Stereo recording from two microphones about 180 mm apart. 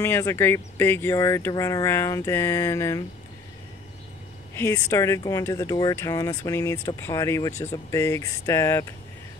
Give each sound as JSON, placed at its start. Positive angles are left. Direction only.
{"t": 0.0, "sound": "speech", "side_deg": 15}
{"t": 4.6, "sound": "speech", "side_deg": 20}